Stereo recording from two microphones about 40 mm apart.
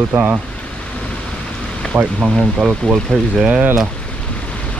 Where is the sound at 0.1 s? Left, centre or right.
Right.